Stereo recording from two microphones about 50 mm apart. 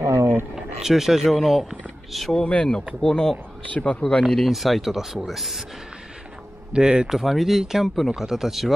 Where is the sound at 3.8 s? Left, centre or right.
Left.